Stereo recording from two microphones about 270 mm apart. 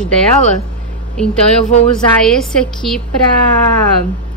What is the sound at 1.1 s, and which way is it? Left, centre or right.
A woman's voice, centre.